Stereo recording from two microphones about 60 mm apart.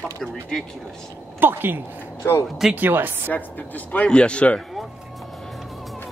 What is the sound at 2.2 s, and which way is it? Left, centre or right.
Speech, left.